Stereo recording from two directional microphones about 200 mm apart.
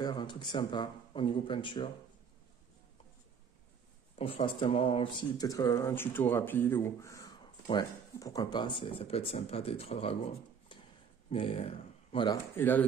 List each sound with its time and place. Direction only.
0.0 s speech: 25° left (ahead or behind)
4.2 s speech: 30° left (ahead or behind)
10.7 s a sound: 25° left (ahead or behind)
11.2 s speech: 30° left (ahead or behind)
12.5 s speech: 10° left (ahead or behind)